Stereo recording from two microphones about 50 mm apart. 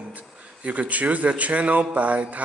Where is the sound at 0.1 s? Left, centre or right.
Right.